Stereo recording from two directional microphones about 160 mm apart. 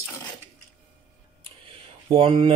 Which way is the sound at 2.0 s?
30° right (ahead or behind).